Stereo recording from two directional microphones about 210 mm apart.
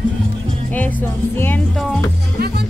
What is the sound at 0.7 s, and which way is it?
Music, 10° left (ahead or behind).